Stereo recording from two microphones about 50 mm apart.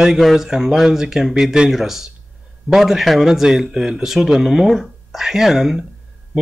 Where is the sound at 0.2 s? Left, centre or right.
Centre.